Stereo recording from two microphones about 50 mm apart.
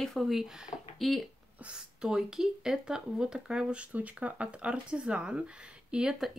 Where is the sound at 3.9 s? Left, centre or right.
Right.